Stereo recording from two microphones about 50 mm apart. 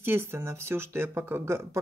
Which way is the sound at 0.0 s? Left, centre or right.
Right.